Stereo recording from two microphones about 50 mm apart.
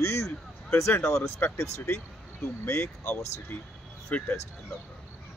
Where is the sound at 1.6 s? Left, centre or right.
Left.